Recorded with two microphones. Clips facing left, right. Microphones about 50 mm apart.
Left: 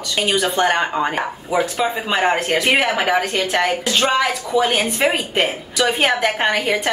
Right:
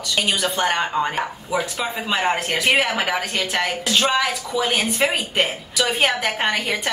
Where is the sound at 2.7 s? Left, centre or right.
Centre.